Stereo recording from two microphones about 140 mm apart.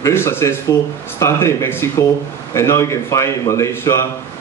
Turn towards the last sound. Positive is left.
turn(degrees=20)  # may be behind; listen again after turning